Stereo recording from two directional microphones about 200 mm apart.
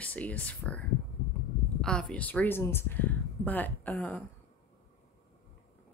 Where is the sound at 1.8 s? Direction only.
5° left (ahead or behind).